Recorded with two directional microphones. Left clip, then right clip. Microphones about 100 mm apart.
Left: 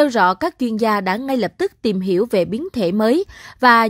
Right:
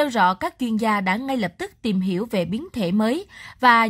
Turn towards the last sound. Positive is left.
turn(degrees=40)  # may be behind; listen again after turning